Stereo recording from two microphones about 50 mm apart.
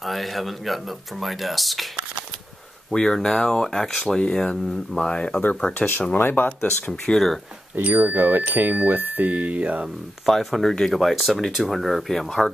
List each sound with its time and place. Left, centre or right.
0.0 s speech: centre
2.9 s speech: centre
6.1 s speech: left
6.9 s speech: centre
7.7 s speech: right
10.2 s speech: centre